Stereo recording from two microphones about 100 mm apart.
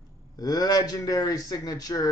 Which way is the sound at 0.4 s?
40° left (ahead or behind).